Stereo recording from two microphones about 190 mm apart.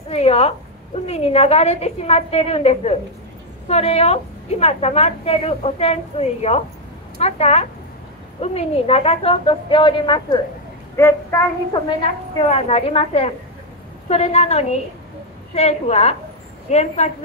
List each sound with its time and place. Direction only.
0.1 s a woman's voice: 35° left (ahead or behind)
11.0 s child singing: 15° left (ahead or behind)
12.4 s a woman's voice: 30° left (ahead or behind)